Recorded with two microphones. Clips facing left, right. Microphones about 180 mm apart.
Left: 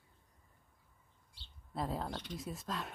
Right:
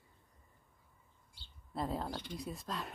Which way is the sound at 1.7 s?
Centre (ahead or behind).